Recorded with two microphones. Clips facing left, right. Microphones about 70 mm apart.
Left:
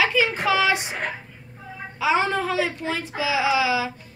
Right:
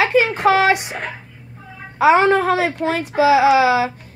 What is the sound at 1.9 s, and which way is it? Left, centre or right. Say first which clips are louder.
A woman's voice: right 9 dB; right.